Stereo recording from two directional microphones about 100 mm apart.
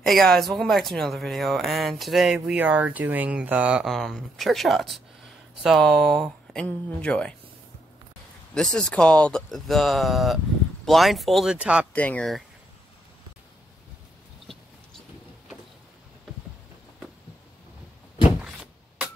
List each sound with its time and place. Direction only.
0.0 s speech: 5° left (ahead or behind)
3.9 s speech: centre (ahead or behind)
8.5 s speech: 5° left (ahead or behind)
11.5 s speech: 10° right (ahead or behind)
11.9 s speech: 15° left (ahead or behind)
18.4 s a sound: 10° right (ahead or behind)